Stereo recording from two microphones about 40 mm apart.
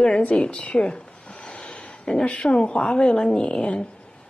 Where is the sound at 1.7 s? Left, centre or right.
Left.